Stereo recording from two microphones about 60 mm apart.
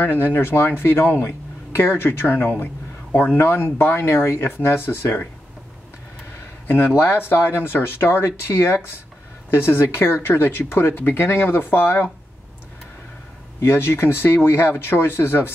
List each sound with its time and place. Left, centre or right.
0.0 s speech: left
7.0 s speech: left
13.6 s speech: left